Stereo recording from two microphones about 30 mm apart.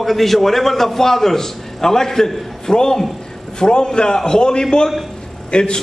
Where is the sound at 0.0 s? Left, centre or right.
Centre.